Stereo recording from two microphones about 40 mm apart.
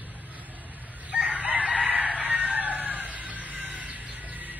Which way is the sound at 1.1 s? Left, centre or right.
Right.